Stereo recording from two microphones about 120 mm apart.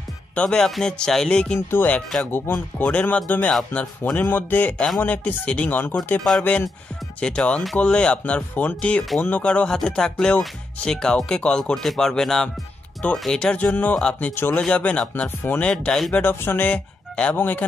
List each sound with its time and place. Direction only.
0.3 s speech: 10° left (ahead or behind)
7.2 s speech: 10° left (ahead or behind)